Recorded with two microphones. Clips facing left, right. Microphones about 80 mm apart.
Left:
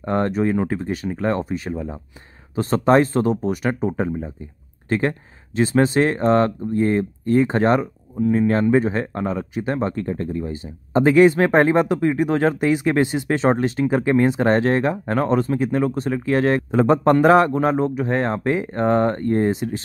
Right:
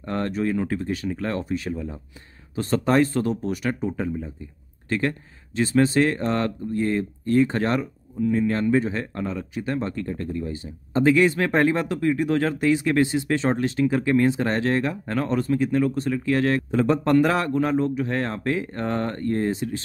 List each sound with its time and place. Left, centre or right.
0.0 s speech: left